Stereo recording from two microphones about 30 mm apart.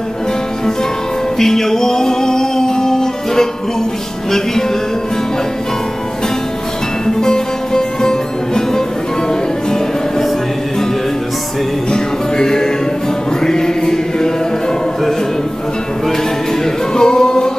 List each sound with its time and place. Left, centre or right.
1.4 s music: centre
7.1 s music: left
11.9 s music: left
16.6 s music: left